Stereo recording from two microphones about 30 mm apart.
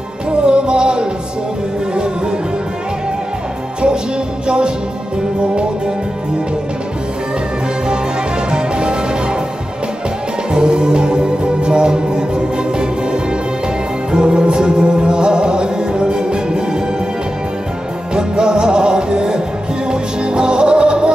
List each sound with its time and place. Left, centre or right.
0.5 s music: right
4.5 s music: right
8.5 s music: right
10.5 s music: right
14.1 s music: right
18.1 s music: right